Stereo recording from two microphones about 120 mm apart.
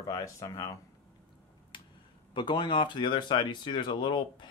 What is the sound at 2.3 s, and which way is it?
Speech, 40° left (ahead or behind).